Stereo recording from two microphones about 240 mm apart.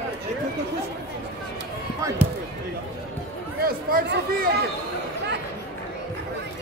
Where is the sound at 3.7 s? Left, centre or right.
Right.